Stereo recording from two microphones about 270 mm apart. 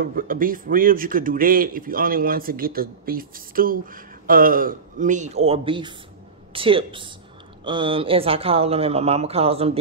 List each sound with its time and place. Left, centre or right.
0.0 s a man's voice: right